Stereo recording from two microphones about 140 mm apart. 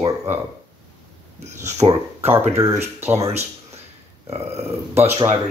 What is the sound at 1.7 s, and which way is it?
Speech, 20° right (ahead or behind).